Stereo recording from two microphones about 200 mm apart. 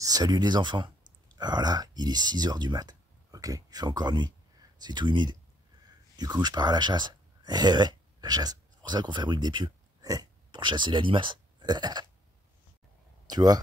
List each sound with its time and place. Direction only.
0.0 s speech: 20° right (ahead or behind)
13.3 s speech: 20° right (ahead or behind)